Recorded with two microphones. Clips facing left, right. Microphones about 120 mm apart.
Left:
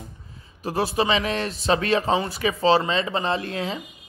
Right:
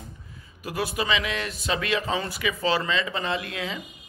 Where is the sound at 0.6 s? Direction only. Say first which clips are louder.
Left 5 dB; 35° left (ahead or behind).